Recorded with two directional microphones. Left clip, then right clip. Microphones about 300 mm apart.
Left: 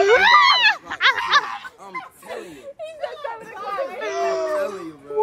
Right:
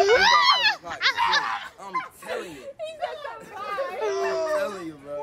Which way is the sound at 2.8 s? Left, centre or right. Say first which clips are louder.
Left 2 dB; left.